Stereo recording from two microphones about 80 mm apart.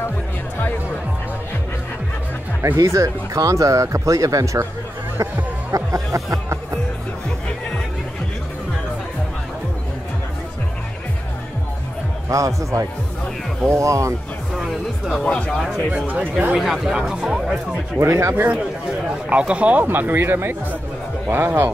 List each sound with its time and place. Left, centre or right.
2.8 s speech: right
5.1 s a sound: right
6.1 s music: right
12.3 s speech: right
14.5 s music: centre
15.2 s speech: centre
15.5 s speech: centre
16.1 s speech: centre
16.5 s speech: centre
17.9 s speech: right
19.0 s speech: centre